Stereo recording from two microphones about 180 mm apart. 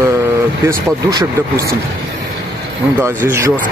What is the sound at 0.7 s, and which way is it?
Speech, 20° right (ahead or behind).